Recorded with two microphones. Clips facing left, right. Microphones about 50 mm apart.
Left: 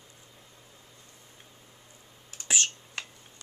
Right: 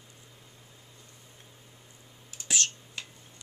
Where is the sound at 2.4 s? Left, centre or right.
Left.